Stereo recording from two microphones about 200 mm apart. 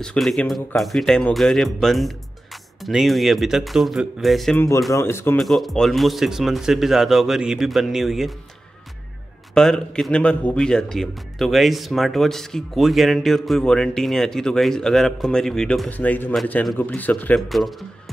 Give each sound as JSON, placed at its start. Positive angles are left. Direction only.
{"t": 0.0, "sound": "a man's voice", "side_deg": 0}
{"t": 4.6, "sound": "speech", "side_deg": 15}
{"t": 5.4, "sound": "a man's voice", "side_deg": 0}
{"t": 9.5, "sound": "a man's voice", "side_deg": 5}